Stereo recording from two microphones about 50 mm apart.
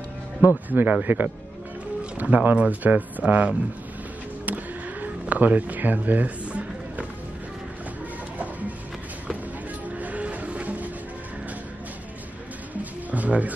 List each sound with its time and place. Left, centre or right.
0.7 s speech: right
5.0 s a sound: right
8.4 s music: right
9.9 s music: right
13.1 s music: right